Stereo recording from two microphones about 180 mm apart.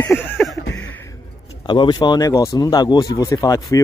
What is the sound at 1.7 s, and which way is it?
Speech, 25° left (ahead or behind).